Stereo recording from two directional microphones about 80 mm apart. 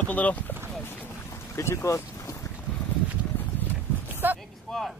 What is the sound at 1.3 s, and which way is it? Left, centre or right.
Boat, left.